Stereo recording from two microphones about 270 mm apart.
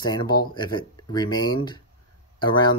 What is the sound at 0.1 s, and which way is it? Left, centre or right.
Speech, centre.